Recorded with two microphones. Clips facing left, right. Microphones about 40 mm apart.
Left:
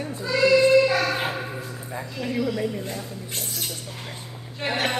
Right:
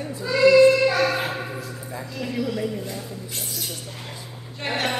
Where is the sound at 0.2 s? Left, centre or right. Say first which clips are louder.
Right 4 dB; centre.